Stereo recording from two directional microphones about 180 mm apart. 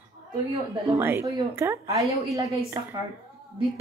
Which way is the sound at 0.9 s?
15° right (ahead or behind).